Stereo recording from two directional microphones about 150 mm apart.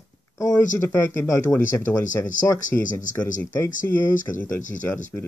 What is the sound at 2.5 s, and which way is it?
Speech, 60° left (ahead or behind).